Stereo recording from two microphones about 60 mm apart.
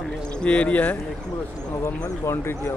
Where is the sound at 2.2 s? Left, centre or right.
Left.